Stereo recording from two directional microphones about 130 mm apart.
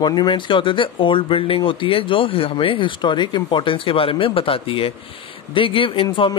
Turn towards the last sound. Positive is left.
turn(degrees=40)  # may be behind; listen again after turning